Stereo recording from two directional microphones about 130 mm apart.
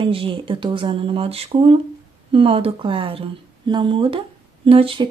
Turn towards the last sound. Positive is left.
turn(degrees=-45)  # may be behind; listen again after turning